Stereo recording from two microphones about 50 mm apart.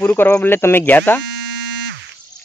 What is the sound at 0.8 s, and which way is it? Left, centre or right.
Speech, left.